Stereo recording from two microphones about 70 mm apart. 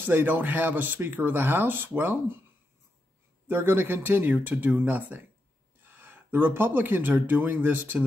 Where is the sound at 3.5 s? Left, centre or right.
Right.